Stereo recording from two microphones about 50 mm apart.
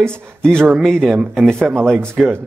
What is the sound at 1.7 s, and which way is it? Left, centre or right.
Speech, right.